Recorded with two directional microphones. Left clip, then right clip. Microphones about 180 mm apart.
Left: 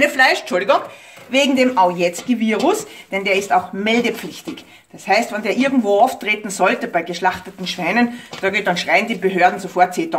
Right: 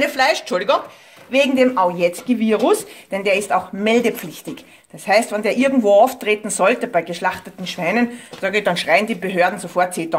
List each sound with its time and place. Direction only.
0.0 s speech: 40° right (ahead or behind)
1.3 s speech: 25° right (ahead or behind); by 9.8 s 45° right (ahead or behind)